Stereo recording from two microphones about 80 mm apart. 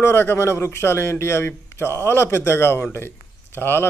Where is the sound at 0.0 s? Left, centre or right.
Left.